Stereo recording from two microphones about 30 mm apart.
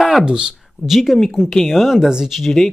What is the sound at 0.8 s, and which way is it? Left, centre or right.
Speech, centre.